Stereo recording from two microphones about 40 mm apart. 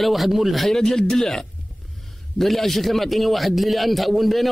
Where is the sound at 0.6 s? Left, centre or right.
Centre.